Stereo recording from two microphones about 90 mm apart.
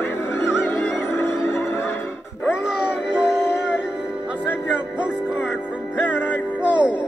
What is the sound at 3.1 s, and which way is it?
Music, 10° right (ahead or behind).